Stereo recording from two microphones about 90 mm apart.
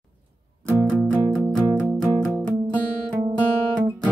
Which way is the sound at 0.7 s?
10° left (ahead or behind).